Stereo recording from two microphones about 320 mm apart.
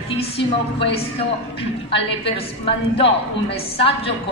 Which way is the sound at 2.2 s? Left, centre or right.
Centre.